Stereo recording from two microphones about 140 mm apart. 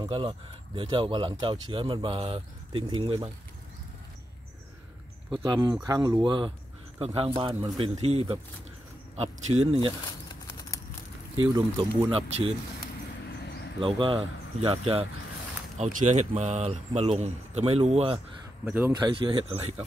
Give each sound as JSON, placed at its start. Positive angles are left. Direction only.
{"t": 0.0, "sound": "speech", "side_deg": -35}
{"t": 5.4, "sound": "speech", "side_deg": -30}
{"t": 8.0, "sound": "speech", "side_deg": -45}
{"t": 10.4, "sound": "a sound", "side_deg": 25}
{"t": 12.1, "sound": "speech", "side_deg": -40}
{"t": 13.7, "sound": "speech", "side_deg": -35}
{"t": 15.8, "sound": "speech", "side_deg": -60}
{"t": 18.7, "sound": "speech", "side_deg": -10}
{"t": 18.9, "sound": "speech", "side_deg": -35}